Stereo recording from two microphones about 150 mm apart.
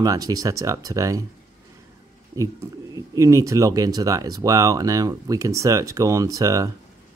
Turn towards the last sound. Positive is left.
turn(degrees=-25)  # may be behind; listen again after turning